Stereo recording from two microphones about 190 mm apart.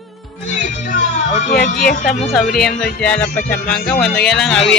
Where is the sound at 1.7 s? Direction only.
50° left (ahead or behind).